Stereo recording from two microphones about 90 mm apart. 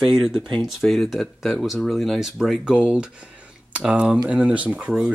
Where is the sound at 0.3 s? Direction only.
65° right (ahead or behind).